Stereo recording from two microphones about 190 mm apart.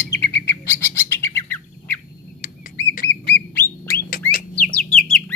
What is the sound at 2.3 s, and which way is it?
Rodents, 45° left (ahead or behind).